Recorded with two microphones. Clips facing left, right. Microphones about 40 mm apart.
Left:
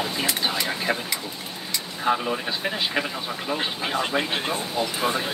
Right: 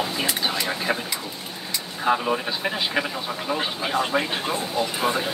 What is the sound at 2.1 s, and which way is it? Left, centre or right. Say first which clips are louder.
Speech: right 1 dB; centre.